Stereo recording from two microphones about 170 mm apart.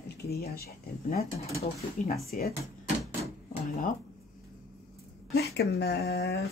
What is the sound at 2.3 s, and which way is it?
Speech, 55° left (ahead or behind).